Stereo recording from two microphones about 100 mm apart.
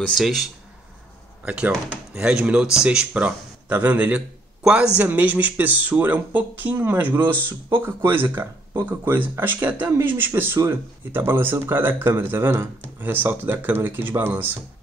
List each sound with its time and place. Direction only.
0.1 s speech: centre (ahead or behind); by 14.6 s 20° right (ahead or behind)